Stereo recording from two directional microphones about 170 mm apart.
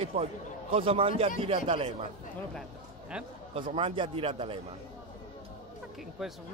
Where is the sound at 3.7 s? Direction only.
30° right (ahead or behind).